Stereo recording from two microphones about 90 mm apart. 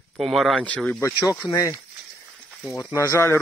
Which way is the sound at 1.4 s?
65° left (ahead or behind).